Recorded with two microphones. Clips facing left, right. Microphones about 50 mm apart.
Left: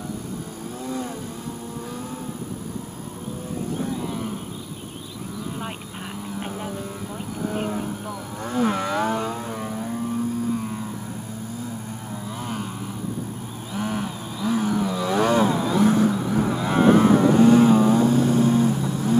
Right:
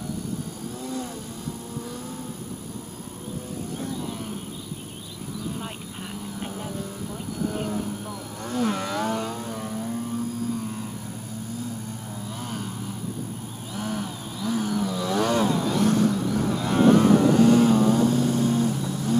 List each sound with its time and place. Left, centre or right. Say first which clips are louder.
7.3 s a sound: left 1 dB; left
8.5 s vehicle: left 3 dB; left
13.7 s vehicle: left 3 dB; left